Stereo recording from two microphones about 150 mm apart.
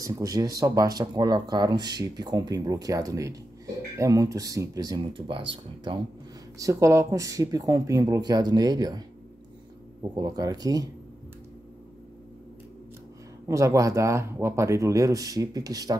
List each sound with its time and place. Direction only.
0.0 s speech: 25° right (ahead or behind)
6.6 s speech: 20° right (ahead or behind)
10.1 s speech: 25° right (ahead or behind)
13.5 s speech: 20° right (ahead or behind)